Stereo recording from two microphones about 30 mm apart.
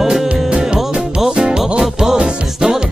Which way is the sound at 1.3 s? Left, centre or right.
Right.